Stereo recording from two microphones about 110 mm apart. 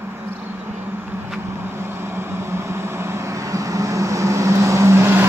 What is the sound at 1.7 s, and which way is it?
Vehicle, 20° right (ahead or behind).